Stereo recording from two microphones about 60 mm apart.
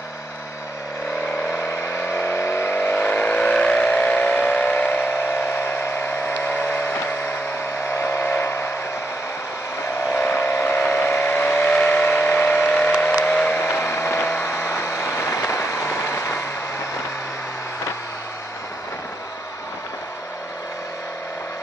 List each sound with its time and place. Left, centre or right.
1.5 s vehicle: left
3.0 s vehicle: left
10.2 s vehicle: left
13.6 s vehicle: left
14.5 s vehicle: left